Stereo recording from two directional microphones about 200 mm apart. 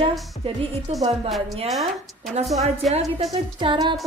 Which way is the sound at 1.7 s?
Centre (ahead or behind).